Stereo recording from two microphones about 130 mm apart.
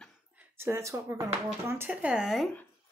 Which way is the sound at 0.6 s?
20° right (ahead or behind).